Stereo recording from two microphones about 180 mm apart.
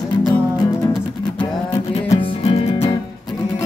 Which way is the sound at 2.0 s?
35° left (ahead or behind).